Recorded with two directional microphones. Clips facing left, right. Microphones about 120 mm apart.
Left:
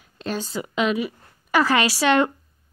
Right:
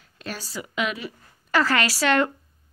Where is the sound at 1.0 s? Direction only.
15° left (ahead or behind).